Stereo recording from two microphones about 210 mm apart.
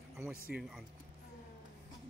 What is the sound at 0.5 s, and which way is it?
Speech, centre (ahead or behind).